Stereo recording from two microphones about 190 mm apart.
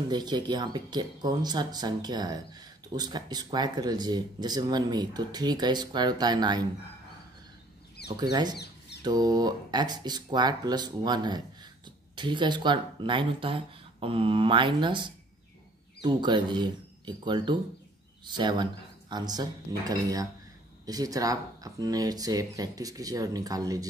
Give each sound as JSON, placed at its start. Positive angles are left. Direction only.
{"t": 0.1, "sound": "speech", "side_deg": -20}
{"t": 8.1, "sound": "speech", "side_deg": -20}
{"t": 8.5, "sound": "rodents", "side_deg": 60}
{"t": 9.0, "sound": "speech", "side_deg": -20}